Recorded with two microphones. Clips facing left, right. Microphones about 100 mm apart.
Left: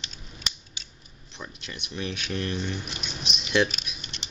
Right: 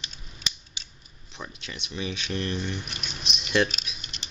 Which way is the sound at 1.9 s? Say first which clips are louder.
Even; 5° right (ahead or behind).